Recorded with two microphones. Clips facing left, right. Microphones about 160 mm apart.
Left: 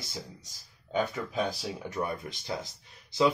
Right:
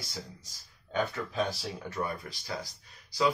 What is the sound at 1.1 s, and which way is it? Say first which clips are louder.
Speech: left 1 dB; 15° left (ahead or behind).